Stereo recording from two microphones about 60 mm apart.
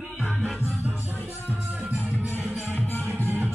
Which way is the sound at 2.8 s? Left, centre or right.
Left.